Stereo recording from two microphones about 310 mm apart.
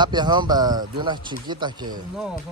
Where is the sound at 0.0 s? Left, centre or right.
Centre.